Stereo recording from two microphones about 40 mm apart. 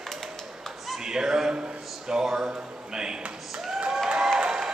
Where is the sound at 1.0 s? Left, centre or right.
Centre.